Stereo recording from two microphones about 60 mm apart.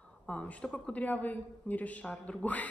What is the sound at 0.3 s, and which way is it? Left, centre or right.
A man's voice, left.